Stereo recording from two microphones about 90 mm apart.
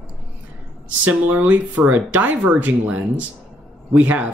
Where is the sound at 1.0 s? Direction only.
20° right (ahead or behind).